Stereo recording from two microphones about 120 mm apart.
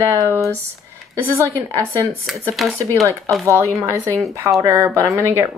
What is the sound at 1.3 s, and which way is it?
Speech, 25° right (ahead or behind).